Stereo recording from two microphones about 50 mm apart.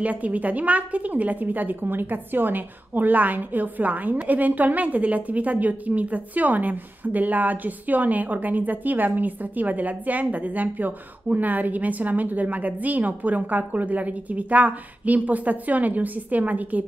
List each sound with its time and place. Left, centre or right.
0.0 s a woman's voice: right